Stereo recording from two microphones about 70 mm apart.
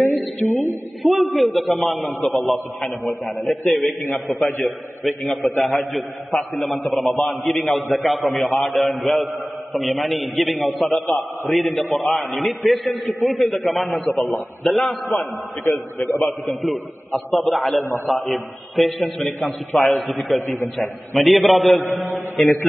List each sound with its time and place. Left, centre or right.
0.0 s a sound: centre
1.0 s a man's voice: centre
16.0 s a man's voice: centre
16.4 s a man's voice: centre